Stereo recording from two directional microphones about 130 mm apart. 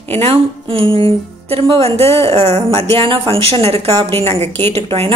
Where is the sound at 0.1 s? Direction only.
50° right (ahead or behind).